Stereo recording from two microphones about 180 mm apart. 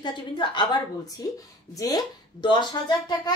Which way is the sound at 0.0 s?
25° left (ahead or behind).